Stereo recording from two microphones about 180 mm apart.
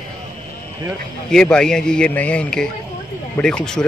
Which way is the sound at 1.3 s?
5° left (ahead or behind).